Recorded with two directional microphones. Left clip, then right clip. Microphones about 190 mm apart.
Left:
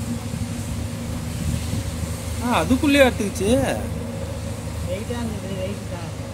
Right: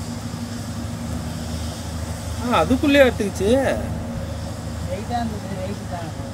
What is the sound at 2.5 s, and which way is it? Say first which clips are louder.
Speech: right 2 dB; 25° left (ahead or behind).